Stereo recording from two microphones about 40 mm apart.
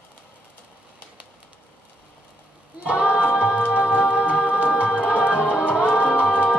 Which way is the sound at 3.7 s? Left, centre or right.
Right.